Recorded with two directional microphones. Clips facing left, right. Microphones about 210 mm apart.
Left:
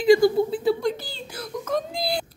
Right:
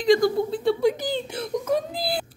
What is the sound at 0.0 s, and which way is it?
Speech, 5° left (ahead or behind).